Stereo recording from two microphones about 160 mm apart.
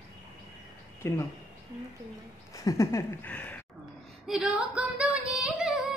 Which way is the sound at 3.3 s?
10° left (ahead or behind).